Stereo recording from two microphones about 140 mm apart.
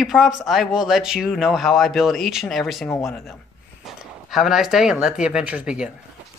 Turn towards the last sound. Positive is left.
turn(degrees=-5)  # may be behind; listen again after turning